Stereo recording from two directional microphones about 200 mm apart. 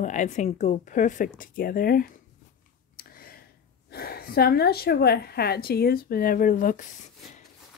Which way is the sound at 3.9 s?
50° left (ahead or behind).